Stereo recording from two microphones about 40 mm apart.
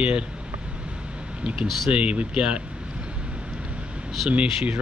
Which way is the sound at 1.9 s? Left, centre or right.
Right.